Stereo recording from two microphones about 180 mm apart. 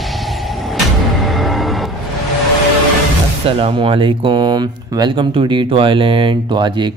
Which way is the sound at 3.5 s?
30° right (ahead or behind).